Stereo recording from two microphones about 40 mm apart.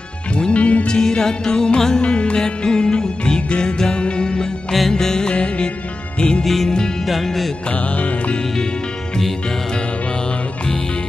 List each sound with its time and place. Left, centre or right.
0.5 s music: left
0.8 s music: centre
5.3 s music: left
6.4 s music: centre